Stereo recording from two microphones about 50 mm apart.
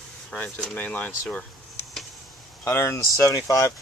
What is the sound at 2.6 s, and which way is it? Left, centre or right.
Speech, left.